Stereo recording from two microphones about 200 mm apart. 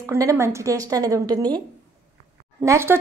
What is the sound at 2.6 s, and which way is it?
Speech, 15° right (ahead or behind).